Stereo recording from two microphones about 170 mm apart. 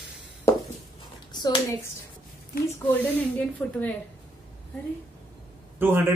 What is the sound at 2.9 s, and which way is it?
Speech, 10° left (ahead or behind).